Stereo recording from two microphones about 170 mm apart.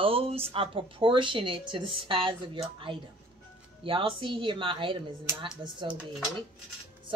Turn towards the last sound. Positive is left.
turn(degrees=-5)  # may be behind; listen again after turning